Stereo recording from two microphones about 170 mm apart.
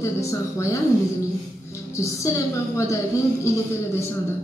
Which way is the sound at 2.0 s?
20° left (ahead or behind).